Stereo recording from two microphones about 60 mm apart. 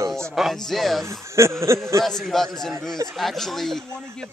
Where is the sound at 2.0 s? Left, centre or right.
Centre.